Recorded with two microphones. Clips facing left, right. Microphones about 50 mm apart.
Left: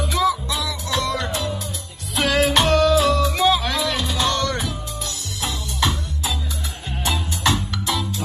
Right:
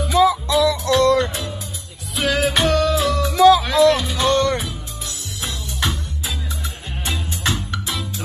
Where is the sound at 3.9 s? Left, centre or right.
Centre.